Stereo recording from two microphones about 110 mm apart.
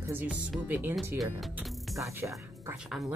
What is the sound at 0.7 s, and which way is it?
Speech, 15° right (ahead or behind).